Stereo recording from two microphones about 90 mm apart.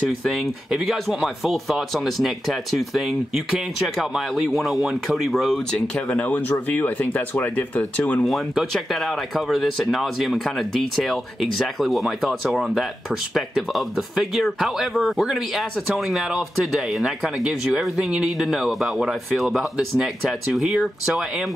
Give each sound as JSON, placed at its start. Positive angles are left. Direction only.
{"t": 0.2, "sound": "speech", "side_deg": 0}
{"t": 8.2, "sound": "speech", "side_deg": 0}